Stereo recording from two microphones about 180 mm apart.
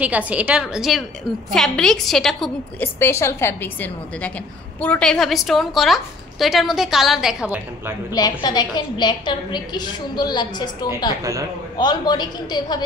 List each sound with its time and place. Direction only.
0.0 s a woman's voice: 10° right (ahead or behind)
3.0 s a woman's voice: 15° left (ahead or behind); by 7.9 s 10° right (ahead or behind)
8.1 s a woman's voice: 20° left (ahead or behind)